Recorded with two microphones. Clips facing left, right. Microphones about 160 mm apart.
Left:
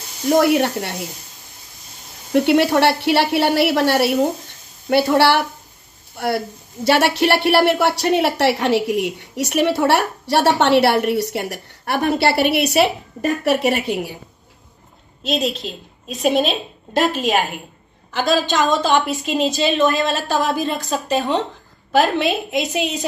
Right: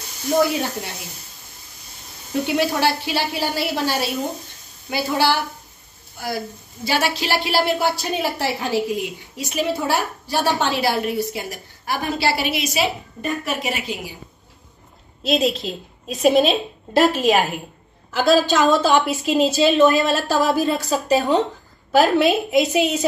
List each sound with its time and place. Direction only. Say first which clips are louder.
0.4 s a woman's voice: left 4 dB; 65° left (ahead or behind)
2.3 s a woman's voice: left 6 dB; 70° left (ahead or behind)
15.2 s a woman's voice: right 2 dB; centre (ahead or behind)
19.9 s speech: right 1 dB; 40° right (ahead or behind)
20.3 s a woman's voice: right 2 dB; centre (ahead or behind)